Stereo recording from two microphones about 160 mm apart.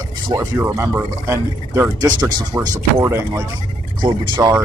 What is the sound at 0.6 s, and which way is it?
A man's voice, 15° right (ahead or behind).